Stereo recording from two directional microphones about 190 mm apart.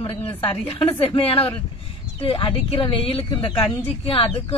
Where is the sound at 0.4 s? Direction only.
30° left (ahead or behind).